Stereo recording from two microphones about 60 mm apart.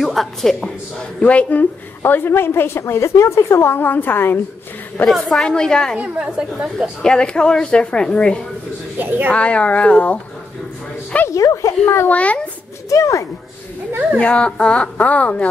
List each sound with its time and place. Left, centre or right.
0.0 s music: centre
1.2 s a woman's voice: left
5.0 s a woman's voice: centre
5.9 s a woman's voice: centre
7.0 s a woman's voice: centre
8.9 s a woman's voice: right
9.3 s a woman's voice: centre
11.2 s a child's voice: left
12.1 s a woman's voice: left
12.9 s a child's voice: left
14.1 s a woman's voice: centre